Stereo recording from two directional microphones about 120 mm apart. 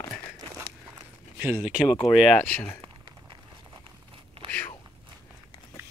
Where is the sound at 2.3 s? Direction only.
10° left (ahead or behind).